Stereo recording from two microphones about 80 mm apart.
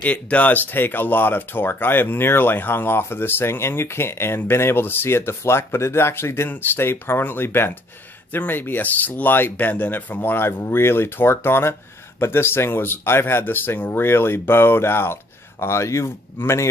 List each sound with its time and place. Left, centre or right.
0.0 s speech: centre